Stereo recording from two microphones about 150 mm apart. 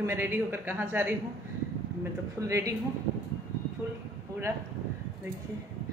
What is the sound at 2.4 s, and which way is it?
Speech, 20° right (ahead or behind).